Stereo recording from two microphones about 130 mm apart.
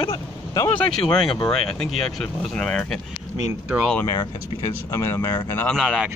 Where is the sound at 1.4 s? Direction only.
5° left (ahead or behind).